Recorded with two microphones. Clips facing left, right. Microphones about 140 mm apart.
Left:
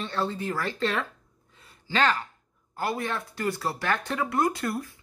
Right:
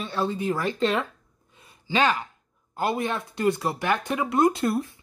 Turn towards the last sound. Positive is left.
turn(degrees=-25)  # may be behind; listen again after turning